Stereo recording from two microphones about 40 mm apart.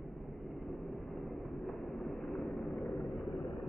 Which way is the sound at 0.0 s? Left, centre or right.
Centre.